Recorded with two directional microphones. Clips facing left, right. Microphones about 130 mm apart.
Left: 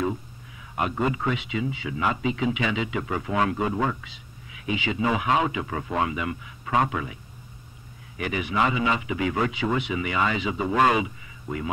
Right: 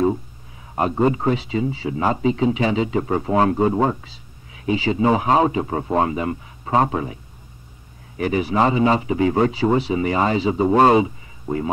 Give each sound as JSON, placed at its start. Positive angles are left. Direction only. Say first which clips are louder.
{"t": 0.0, "sound": "speech", "louder": "right 8 dB", "side_deg": -35}
{"t": 8.2, "sound": "speech", "louder": "right 6 dB", "side_deg": -35}